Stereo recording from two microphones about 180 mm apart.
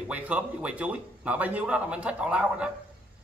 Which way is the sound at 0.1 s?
5° right (ahead or behind).